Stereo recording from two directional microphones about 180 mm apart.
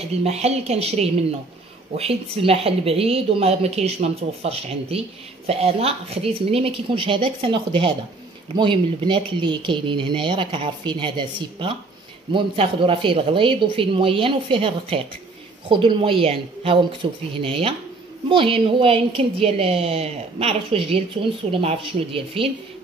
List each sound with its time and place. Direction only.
0.2 s a woman's voice: 35° right (ahead or behind)